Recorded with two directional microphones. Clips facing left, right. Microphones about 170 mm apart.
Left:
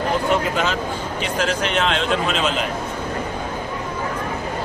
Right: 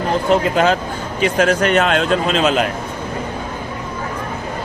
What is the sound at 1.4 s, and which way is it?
A man's voice, 45° right (ahead or behind).